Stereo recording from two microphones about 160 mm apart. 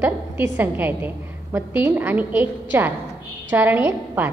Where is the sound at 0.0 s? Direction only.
10° right (ahead or behind).